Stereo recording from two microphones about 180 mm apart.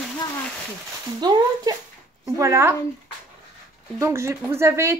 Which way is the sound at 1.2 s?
25° right (ahead or behind).